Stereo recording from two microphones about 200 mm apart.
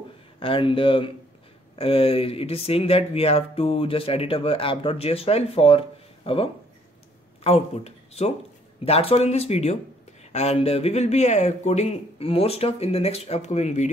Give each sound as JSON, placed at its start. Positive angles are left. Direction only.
{"t": 0.4, "sound": "speech", "side_deg": 25}